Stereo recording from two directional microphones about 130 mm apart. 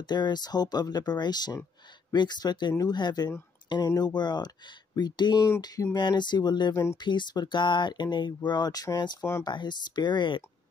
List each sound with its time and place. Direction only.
0.0 s speech: 35° left (ahead or behind)
6.7 s speech: 20° left (ahead or behind)
7.0 s speech: 35° left (ahead or behind)